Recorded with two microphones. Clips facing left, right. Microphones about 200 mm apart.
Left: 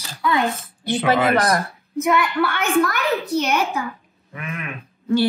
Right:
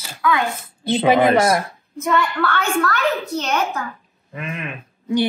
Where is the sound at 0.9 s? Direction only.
20° right (ahead or behind).